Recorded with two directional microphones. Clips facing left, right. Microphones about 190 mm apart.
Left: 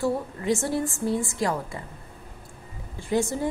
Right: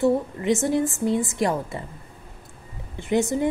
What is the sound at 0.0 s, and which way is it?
A woman's voice, 20° right (ahead or behind).